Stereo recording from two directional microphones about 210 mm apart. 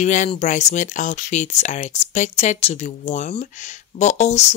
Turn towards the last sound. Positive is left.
turn(degrees=30)  # may be behind; listen again after turning